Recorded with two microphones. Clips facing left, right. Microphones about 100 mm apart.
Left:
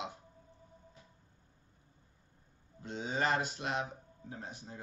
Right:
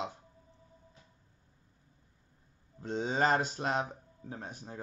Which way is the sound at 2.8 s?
35° right (ahead or behind).